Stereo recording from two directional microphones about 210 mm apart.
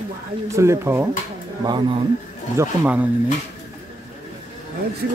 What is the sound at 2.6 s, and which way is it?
Speech, 10° right (ahead or behind).